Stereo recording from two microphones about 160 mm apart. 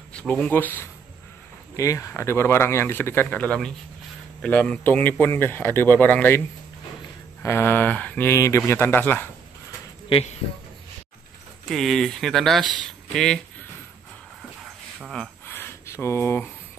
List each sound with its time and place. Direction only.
0.1 s speech: 5° left (ahead or behind)
7.4 s speech: 15° left (ahead or behind)
10.0 s speech: 35° left (ahead or behind)
11.6 s speech: centre (ahead or behind)
15.0 s speech: centre (ahead or behind)
15.4 s a sound: 15° left (ahead or behind)